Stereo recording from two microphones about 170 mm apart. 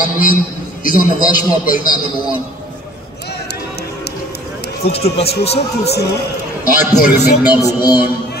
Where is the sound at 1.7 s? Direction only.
55° left (ahead or behind).